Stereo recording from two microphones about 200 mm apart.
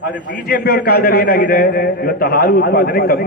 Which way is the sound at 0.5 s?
50° left (ahead or behind).